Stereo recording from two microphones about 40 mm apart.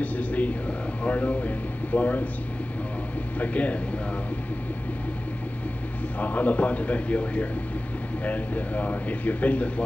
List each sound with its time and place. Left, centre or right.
0.0 s speech: left
3.3 s speech: left
6.1 s speech: left